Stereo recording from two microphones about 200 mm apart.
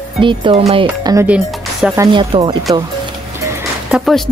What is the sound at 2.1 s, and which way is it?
Speech, 25° right (ahead or behind).